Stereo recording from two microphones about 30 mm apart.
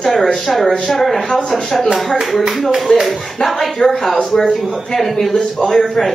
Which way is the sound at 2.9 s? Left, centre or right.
Left.